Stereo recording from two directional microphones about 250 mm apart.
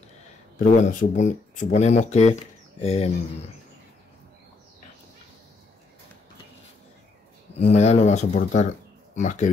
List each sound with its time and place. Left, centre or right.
0.6 s speech: left
7.5 s speech: left